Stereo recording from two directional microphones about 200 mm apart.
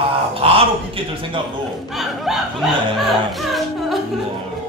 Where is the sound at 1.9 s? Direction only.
Centre (ahead or behind).